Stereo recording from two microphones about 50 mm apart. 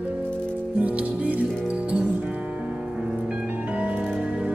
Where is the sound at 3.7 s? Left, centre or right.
Right.